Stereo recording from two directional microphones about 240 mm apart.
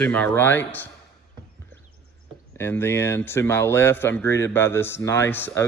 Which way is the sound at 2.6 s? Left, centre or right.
Centre.